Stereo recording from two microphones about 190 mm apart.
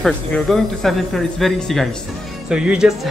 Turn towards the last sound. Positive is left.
turn(degrees=-5)  # may be behind; listen again after turning